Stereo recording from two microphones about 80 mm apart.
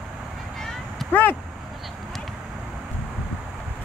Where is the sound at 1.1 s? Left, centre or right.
Left.